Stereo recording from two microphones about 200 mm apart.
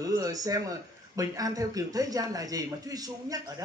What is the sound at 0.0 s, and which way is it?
A man's voice, 15° right (ahead or behind).